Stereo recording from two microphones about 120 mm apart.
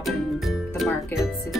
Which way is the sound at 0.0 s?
Centre (ahead or behind).